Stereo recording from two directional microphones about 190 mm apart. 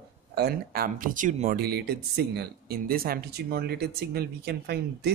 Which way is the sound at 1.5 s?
55° right (ahead or behind).